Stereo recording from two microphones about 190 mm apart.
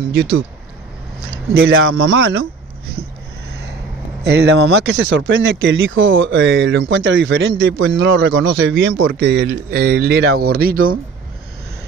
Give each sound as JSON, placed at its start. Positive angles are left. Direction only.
{"t": 1.7, "sound": "speech", "side_deg": -90}
{"t": 4.2, "sound": "speech", "side_deg": -60}
{"t": 8.5, "sound": "speech", "side_deg": -55}